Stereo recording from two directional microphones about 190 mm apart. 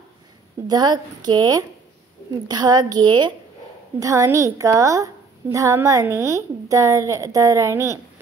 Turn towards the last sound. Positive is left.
turn(degrees=-15)  # may be behind; listen again after turning